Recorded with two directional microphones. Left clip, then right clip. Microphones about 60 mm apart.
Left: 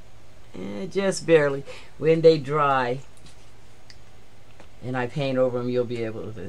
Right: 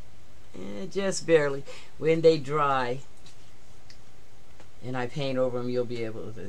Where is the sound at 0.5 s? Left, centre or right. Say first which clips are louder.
Left 5 dB; centre.